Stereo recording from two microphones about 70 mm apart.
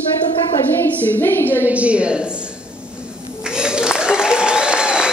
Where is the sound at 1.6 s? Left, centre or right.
Centre.